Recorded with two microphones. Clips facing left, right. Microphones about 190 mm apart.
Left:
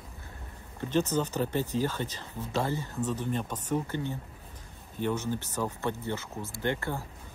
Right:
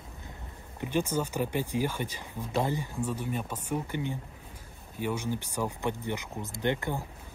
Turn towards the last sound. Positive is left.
turn(degrees=-15)  # may be behind; listen again after turning